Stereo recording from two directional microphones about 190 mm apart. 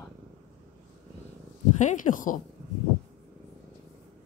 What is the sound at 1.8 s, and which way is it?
Speech, 40° left (ahead or behind).